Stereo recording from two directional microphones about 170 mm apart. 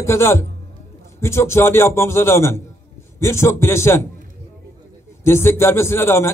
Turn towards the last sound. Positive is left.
turn(degrees=15)  # may be behind; listen again after turning